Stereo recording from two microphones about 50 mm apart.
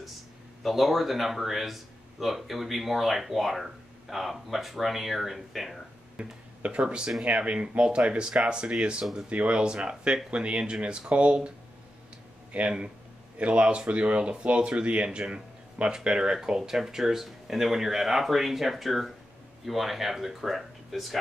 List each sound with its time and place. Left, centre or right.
0.7 s speech: centre
6.1 s speech: right
7.2 s speech: right
12.5 s speech: right; by 21.2 s centre